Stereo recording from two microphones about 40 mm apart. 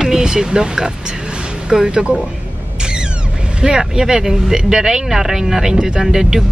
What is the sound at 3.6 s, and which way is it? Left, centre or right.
Speech, centre.